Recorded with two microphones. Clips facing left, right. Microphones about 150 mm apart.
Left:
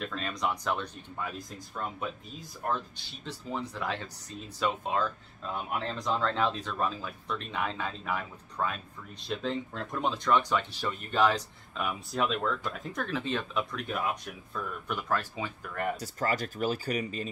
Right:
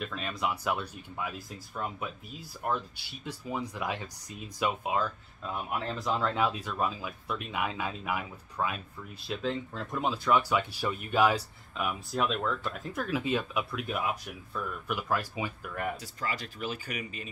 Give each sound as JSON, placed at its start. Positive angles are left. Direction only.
{"t": 0.0, "sound": "speech", "side_deg": -5}
{"t": 2.7, "sound": "speech", "side_deg": -10}
{"t": 16.0, "sound": "speech", "side_deg": 45}